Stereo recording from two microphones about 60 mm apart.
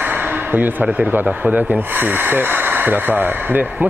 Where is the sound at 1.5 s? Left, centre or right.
Right.